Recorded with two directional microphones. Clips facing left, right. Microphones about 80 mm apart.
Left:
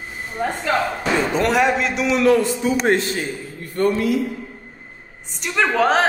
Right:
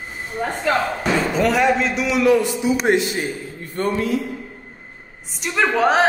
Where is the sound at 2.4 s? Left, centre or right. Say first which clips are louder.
Even; left.